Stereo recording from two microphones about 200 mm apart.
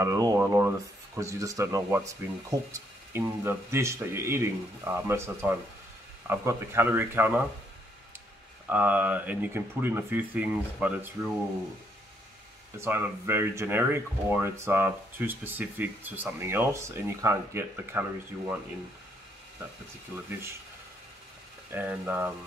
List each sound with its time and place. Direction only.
0.0 s speech: 15° right (ahead or behind)
8.6 s speech: 5° right (ahead or behind)
12.7 s speech: 10° right (ahead or behind)
20.1 s speech: 10° right (ahead or behind)
21.7 s speech: 10° right (ahead or behind)